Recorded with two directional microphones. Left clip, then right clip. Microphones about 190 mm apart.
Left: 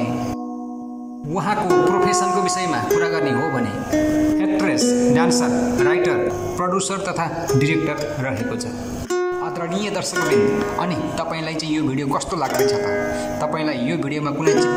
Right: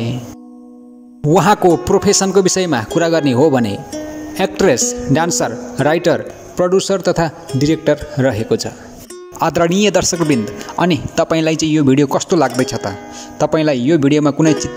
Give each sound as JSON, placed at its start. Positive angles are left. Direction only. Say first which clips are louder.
{"t": 1.3, "sound": "speech", "louder": "right 8 dB", "side_deg": -45}